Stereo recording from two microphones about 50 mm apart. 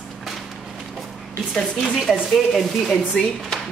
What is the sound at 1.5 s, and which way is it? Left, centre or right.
Speech, centre.